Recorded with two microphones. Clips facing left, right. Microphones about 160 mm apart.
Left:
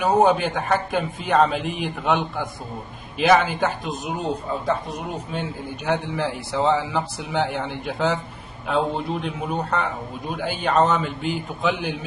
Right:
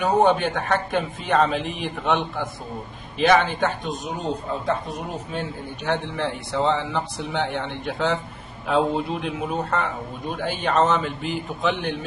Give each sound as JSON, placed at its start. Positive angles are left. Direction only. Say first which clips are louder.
{"t": 0.0, "sound": "speech", "louder": "left 1 dB", "side_deg": 0}